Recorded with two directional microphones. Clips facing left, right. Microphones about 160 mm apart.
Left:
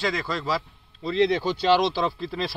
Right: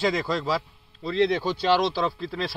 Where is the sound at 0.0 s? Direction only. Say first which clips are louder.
Right 3 dB; 5° right (ahead or behind).